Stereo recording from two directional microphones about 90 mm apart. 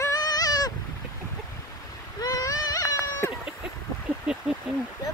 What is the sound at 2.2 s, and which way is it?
Baby cry, 40° left (ahead or behind).